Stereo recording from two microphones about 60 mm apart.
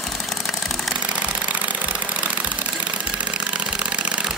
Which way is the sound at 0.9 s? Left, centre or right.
Right.